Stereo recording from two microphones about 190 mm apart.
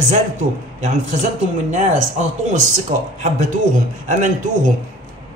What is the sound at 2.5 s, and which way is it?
A man's voice, 40° right (ahead or behind).